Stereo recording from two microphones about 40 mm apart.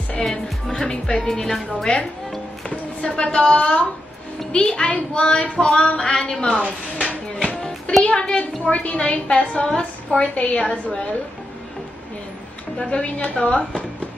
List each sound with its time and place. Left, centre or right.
0.2 s a woman's voice: centre
2.7 s a woman's voice: left
6.6 s speech: right
8.0 s a woman's voice: left
12.7 s speech: left